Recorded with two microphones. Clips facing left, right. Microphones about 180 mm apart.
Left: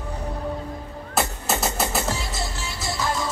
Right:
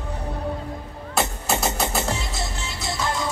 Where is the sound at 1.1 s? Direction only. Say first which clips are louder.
Right 1 dB; centre (ahead or behind).